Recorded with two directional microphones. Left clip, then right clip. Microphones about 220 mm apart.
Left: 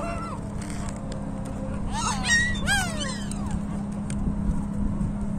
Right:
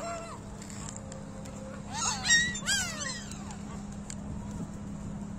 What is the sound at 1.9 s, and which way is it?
Goose, 5° right (ahead or behind).